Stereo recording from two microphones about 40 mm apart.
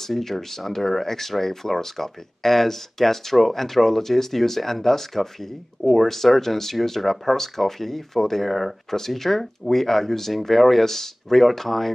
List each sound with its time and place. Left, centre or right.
0.0 s speech: centre